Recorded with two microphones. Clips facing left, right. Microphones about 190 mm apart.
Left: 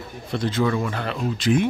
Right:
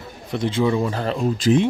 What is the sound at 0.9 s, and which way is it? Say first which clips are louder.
Speech: right 4 dB; 35° right (ahead or behind).